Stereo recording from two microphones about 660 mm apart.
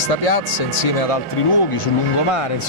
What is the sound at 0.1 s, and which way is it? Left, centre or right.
Speech, left.